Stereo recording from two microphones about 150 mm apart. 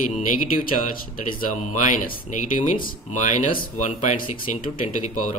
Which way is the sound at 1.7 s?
55° left (ahead or behind).